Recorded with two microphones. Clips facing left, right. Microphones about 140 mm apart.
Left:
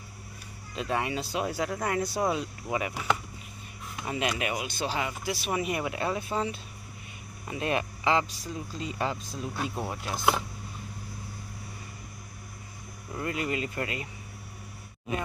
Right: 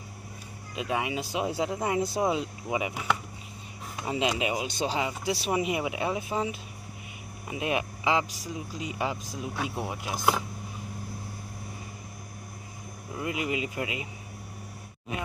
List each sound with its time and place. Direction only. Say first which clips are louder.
0.7 s speech: even; 10° right (ahead or behind)
1.3 s speech: right 3 dB; 20° right (ahead or behind)
4.0 s speech: right 2 dB; 20° right (ahead or behind)
13.1 s speech: even; 10° right (ahead or behind)